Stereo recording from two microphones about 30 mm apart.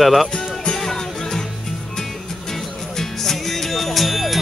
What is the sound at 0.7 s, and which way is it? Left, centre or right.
Music, centre.